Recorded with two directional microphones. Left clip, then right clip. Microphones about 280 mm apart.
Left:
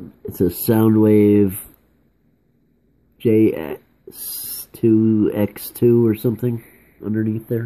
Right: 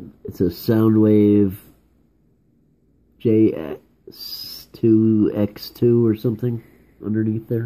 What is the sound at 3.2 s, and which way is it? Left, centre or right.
Speech, centre.